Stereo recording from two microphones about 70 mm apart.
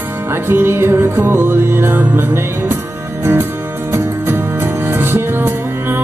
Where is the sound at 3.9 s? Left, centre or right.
Right.